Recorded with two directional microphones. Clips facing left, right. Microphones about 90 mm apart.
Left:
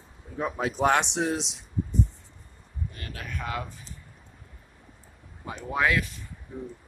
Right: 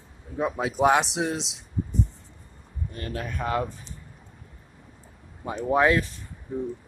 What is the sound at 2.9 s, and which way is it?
Speech, 30° right (ahead or behind).